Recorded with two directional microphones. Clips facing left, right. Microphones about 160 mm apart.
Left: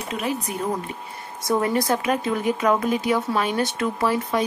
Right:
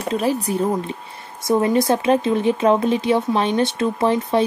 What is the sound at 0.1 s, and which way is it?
Speech, 35° right (ahead or behind).